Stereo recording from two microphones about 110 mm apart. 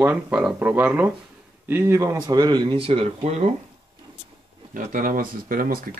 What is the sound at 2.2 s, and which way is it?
Speech, 40° right (ahead or behind).